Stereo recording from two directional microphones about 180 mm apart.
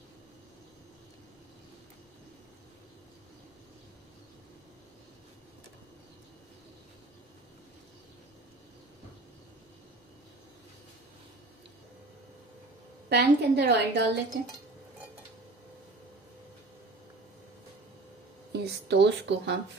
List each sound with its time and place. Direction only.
13.1 s a woman's voice: 65° right (ahead or behind)
18.5 s speech: 70° right (ahead or behind)